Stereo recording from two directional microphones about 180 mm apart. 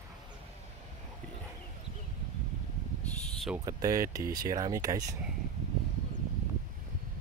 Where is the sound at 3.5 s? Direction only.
20° right (ahead or behind).